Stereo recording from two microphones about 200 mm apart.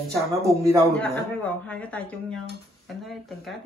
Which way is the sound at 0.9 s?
5° left (ahead or behind).